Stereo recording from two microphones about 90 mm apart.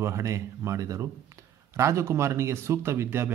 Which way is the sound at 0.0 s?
35° right (ahead or behind).